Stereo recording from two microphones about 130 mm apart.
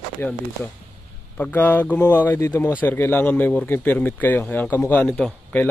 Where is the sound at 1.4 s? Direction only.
15° left (ahead or behind).